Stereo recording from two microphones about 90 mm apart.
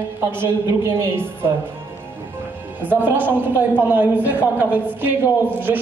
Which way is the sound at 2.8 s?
20° right (ahead or behind).